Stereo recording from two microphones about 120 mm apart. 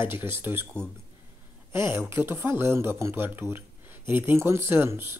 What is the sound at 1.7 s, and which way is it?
Speech, 20° right (ahead or behind).